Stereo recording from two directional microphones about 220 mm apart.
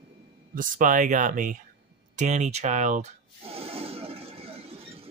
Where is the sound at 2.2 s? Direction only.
30° right (ahead or behind).